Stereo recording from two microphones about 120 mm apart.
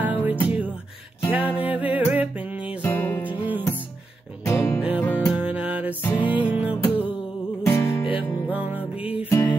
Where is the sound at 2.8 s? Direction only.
15° left (ahead or behind).